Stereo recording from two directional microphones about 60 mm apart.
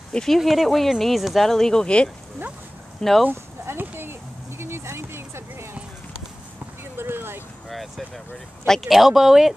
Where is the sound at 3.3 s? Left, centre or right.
Right.